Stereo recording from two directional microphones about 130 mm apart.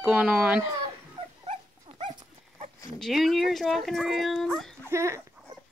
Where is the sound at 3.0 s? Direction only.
Centre (ahead or behind).